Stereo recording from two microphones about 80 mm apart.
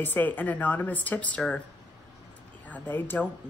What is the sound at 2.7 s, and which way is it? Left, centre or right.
Speech, left.